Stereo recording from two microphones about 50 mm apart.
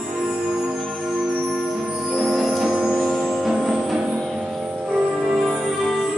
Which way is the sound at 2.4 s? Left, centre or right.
Centre.